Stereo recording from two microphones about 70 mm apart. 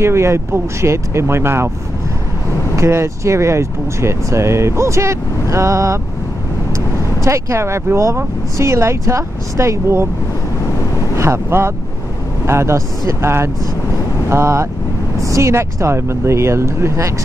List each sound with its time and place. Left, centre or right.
0.0 s speech: right
2.7 s speech: right
7.2 s speech: right
11.1 s speech: right